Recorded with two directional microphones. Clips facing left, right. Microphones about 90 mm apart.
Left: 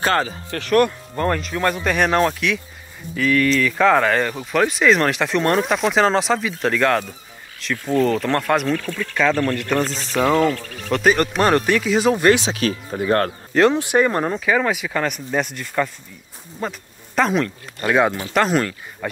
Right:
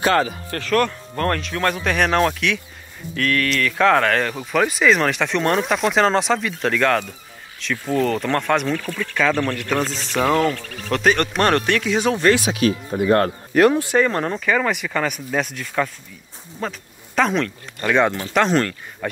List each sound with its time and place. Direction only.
0.0 s speech: 40° left (ahead or behind)
0.7 s speech: 10° left (ahead or behind)
12.2 s speech: 15° left (ahead or behind)
12.4 s speech: 35° left (ahead or behind)
13.7 s speech: 15° left (ahead or behind)